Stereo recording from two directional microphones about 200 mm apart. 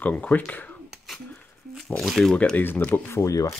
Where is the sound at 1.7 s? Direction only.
Centre (ahead or behind).